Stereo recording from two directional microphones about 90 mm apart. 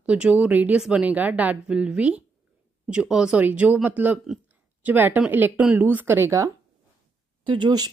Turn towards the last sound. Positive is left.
turn(degrees=-55)  # may be behind; listen again after turning